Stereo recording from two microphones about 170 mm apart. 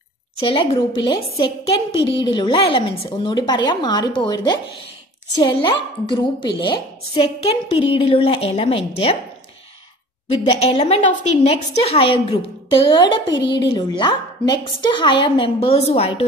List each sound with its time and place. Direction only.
0.4 s a woman's voice: 35° left (ahead or behind)
5.3 s a woman's voice: 25° left (ahead or behind)
10.2 s a woman's voice: 35° left (ahead or behind)